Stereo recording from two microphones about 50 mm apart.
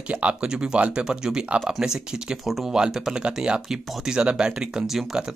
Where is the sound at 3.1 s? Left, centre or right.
Centre.